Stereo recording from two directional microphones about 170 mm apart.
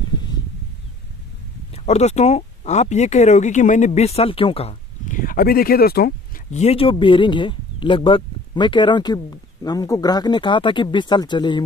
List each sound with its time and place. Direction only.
1.9 s speech: 40° left (ahead or behind); by 6.4 s 65° left (ahead or behind)
6.5 s speech: 40° left (ahead or behind)